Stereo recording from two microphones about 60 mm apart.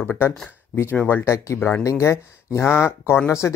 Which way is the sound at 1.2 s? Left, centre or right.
Left.